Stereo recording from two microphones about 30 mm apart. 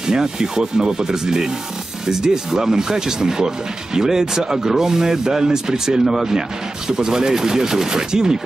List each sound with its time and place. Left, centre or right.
0.0 s speech: right